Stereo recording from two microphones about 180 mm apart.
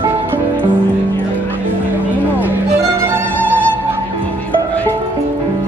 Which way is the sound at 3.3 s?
10° left (ahead or behind).